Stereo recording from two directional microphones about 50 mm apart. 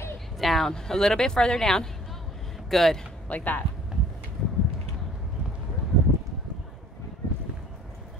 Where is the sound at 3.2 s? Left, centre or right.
Left.